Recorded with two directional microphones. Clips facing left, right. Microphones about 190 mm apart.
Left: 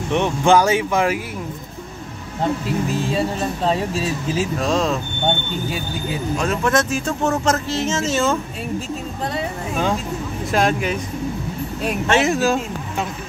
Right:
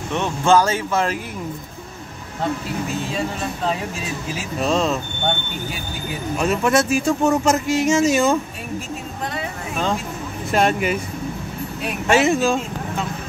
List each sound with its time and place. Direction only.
0.1 s speech: 15° left (ahead or behind)
3.2 s speech: 35° left (ahead or behind)
4.6 s speech: centre (ahead or behind)
6.3 s speech: 5° right (ahead or behind)
10.5 s speech: centre (ahead or behind)
12.1 s speech: centre (ahead or behind)